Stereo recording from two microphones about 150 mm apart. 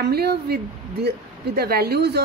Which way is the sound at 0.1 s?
90° right.